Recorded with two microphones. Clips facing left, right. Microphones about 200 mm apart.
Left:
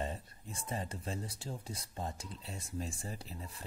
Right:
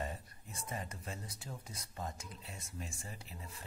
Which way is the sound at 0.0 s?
25° left (ahead or behind).